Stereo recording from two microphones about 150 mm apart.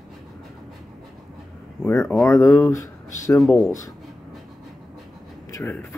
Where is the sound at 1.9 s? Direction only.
15° left (ahead or behind).